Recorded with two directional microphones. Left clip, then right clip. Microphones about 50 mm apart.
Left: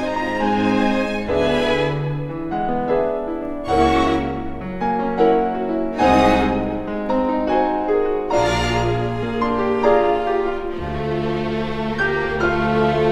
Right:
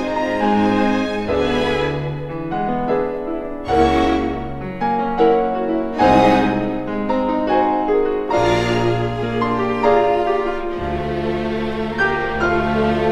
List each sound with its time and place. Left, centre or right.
0.4 s music: left
3.7 s music: left
4.8 s music: centre
5.7 s music: centre
7.1 s music: centre
8.4 s music: left
9.4 s music: centre
12.0 s music: left